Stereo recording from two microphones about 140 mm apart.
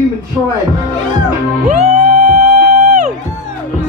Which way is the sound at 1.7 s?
55° right (ahead or behind).